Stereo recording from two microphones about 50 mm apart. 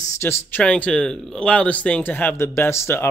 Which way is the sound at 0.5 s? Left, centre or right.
Left.